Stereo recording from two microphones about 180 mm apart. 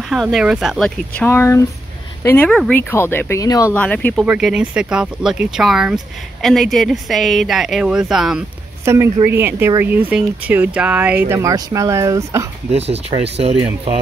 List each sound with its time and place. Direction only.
0.0 s speech: centre (ahead or behind); by 3.7 s 20° left (ahead or behind)
3.7 s speech: 10° left (ahead or behind)
8.8 s speech: 15° right (ahead or behind)
12.7 s speech: 35° right (ahead or behind)